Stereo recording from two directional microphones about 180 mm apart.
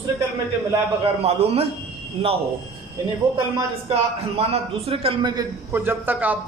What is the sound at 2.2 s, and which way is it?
Speech, 35° right (ahead or behind).